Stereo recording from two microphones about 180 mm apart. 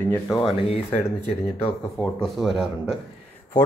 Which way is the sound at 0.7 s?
35° left (ahead or behind).